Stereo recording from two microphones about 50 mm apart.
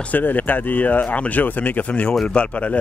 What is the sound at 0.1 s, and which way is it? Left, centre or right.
Speech, left.